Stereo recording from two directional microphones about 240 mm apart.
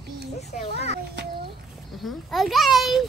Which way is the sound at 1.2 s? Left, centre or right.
Right.